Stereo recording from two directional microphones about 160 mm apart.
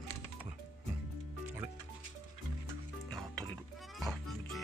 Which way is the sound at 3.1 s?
5° left (ahead or behind).